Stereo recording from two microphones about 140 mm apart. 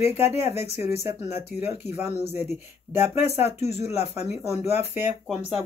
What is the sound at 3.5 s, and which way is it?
Speech, 50° left (ahead or behind).